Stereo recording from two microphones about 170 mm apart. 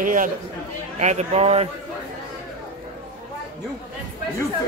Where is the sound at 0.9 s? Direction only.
40° right (ahead or behind).